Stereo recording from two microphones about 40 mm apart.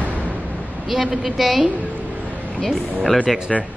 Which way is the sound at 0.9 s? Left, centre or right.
Centre.